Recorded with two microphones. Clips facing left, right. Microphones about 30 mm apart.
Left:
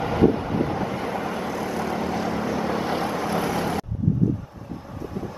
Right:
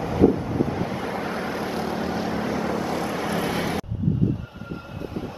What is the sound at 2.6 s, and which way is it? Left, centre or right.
Vehicle, left.